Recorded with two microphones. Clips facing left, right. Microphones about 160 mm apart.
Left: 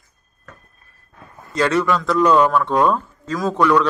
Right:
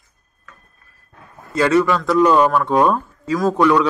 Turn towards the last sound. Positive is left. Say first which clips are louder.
# right 1 dB
turn(degrees=-15)  # may be behind; listen again after turning